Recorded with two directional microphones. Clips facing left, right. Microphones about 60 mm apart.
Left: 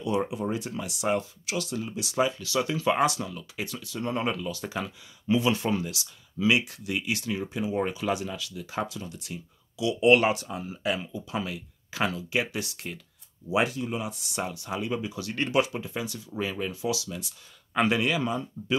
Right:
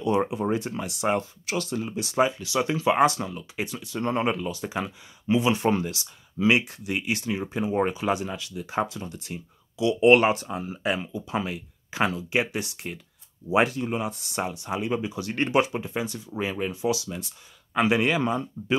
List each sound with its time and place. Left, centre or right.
0.0 s speech: right
2.3 s speech: right
3.3 s speech: right
5.7 s speech: right
13.5 s speech: right
14.4 s speech: right